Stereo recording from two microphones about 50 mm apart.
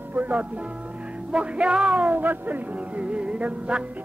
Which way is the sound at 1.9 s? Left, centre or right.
Right.